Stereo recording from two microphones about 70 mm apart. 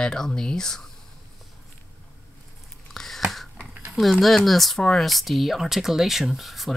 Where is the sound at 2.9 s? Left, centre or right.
Centre.